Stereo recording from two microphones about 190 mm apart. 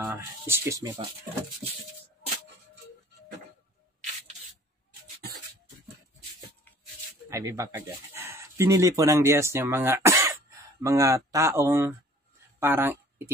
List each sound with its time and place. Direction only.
0.0 s speech: 10° right (ahead or behind)
7.2 s speech: 15° right (ahead or behind)
12.5 s a sound: 10° right (ahead or behind)